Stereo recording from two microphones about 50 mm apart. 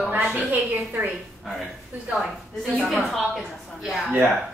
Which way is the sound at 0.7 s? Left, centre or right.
Right.